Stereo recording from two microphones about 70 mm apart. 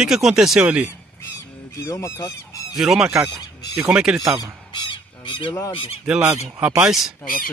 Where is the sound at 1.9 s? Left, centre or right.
Left.